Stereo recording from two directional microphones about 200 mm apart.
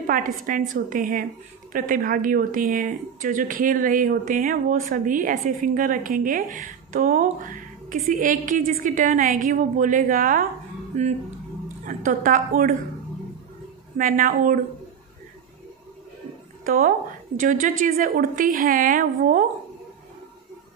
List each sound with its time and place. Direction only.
0.0 s a woman's voice: 45° right (ahead or behind)
13.9 s speech: 45° right (ahead or behind)
16.6 s speech: 45° right (ahead or behind)